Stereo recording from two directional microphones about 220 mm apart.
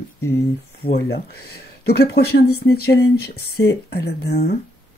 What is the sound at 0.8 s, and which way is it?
Speech, 50° left (ahead or behind).